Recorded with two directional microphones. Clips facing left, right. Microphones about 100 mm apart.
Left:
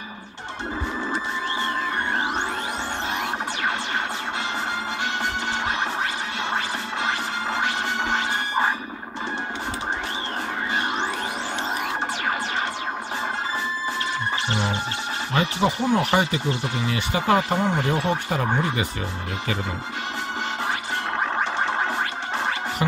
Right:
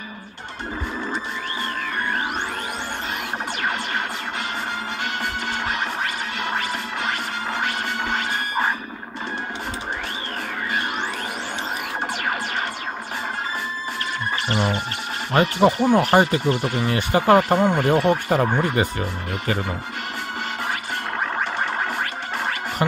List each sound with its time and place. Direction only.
5.2 s music: 25° left (ahead or behind)
6.4 s scratching: 25° left (ahead or behind)
15.3 s speech: 55° right (ahead or behind)